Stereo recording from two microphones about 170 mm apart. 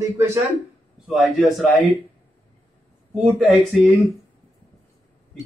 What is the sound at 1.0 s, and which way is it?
Speech, centre (ahead or behind).